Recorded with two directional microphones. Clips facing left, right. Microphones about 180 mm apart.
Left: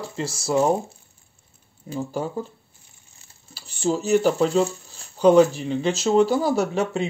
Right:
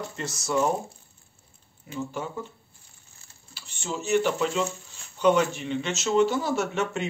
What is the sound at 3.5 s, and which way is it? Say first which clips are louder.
Speech: left 10 dB; 35° left (ahead or behind).